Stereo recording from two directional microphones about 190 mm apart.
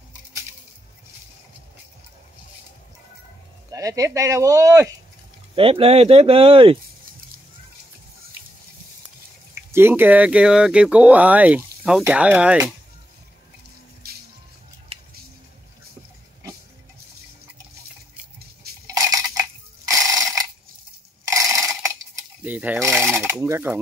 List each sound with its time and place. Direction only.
3.7 s speech: 15° right (ahead or behind)
5.6 s speech: 30° right (ahead or behind)
9.7 s speech: 10° right (ahead or behind)
14.0 s music: 55° right (ahead or behind)
18.9 s dishes: 15° right (ahead or behind)
19.8 s mechanisms: 15° right (ahead or behind)
21.3 s mechanisms: 15° right (ahead or behind)
21.8 s a sound: 15° right (ahead or behind)